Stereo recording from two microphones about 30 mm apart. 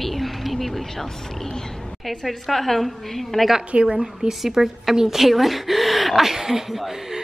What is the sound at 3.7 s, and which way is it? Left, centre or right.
Speech, right.